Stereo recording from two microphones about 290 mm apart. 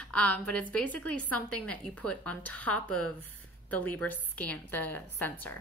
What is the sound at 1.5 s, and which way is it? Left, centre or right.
Speech, centre.